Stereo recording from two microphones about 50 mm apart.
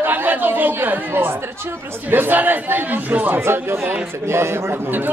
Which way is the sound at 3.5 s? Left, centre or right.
Right.